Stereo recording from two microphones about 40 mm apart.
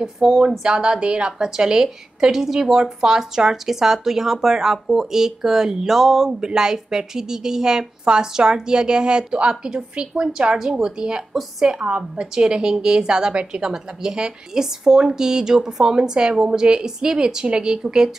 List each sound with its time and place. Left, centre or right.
0.0 s a woman's voice: centre
13.3 s a woman's voice: right
13.6 s speech: centre